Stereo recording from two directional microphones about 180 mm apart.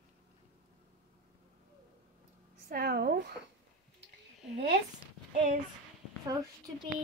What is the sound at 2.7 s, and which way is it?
Speech, 60° right (ahead or behind).